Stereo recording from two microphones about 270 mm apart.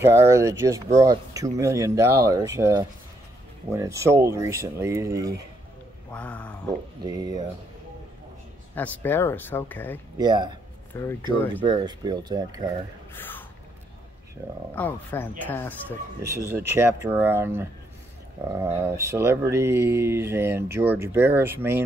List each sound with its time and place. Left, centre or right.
0.3 s speech: centre
6.1 s speech: centre
7.1 s speech: centre
8.7 s speech: centre
10.1 s speech: centre
10.9 s speech: centre
11.6 s speech: centre
13.1 s a sound: centre
14.4 s speech: centre
14.8 s speech: centre
16.4 s speech: centre